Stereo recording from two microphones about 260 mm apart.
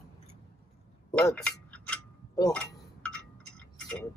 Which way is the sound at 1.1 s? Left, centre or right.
Centre.